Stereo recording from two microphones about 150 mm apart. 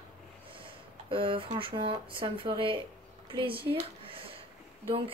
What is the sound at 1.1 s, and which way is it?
Speech, 35° right (ahead or behind).